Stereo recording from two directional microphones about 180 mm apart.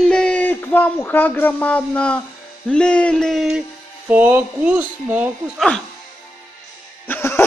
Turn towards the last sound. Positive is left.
turn(degrees=10)  # may be behind; listen again after turning